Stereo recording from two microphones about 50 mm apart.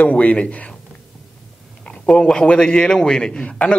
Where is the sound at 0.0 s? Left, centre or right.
Left.